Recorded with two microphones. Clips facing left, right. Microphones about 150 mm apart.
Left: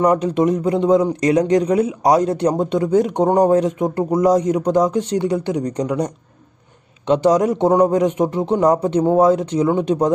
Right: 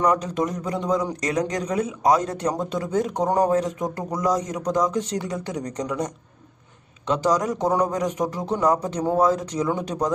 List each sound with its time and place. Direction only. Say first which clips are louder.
0.4 s a man's voice: left 9 dB; 30° left (ahead or behind)